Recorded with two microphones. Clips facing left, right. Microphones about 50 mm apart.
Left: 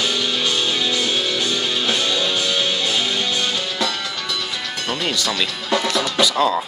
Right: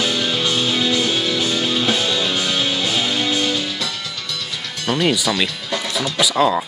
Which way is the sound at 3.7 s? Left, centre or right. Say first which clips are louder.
Left 3 dB; left.